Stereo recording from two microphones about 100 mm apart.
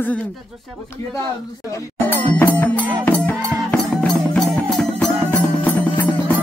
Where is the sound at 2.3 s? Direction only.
15° left (ahead or behind).